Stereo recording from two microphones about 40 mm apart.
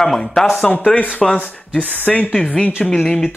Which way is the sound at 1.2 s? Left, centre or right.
Centre.